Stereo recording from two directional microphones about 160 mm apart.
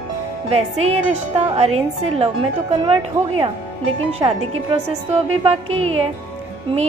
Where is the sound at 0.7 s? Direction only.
40° right (ahead or behind).